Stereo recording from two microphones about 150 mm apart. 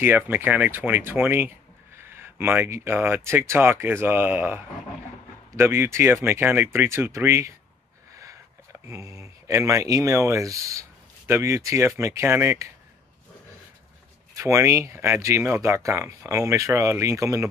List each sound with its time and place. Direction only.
0.0 s speech: 15° right (ahead or behind)
8.1 s a sound: 20° right (ahead or behind)
8.8 s speech: 20° right (ahead or behind)
14.3 s speech: 20° right (ahead or behind)